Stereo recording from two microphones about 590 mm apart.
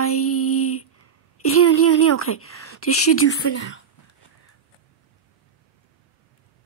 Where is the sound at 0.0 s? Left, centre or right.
Left.